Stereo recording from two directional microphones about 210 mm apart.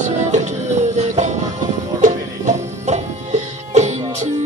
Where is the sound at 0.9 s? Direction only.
35° right (ahead or behind).